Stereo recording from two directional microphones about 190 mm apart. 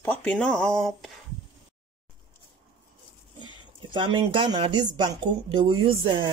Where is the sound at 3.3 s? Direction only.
25° right (ahead or behind).